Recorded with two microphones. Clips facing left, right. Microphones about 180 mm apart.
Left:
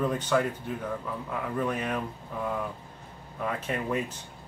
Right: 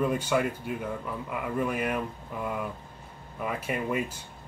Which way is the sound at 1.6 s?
10° right (ahead or behind).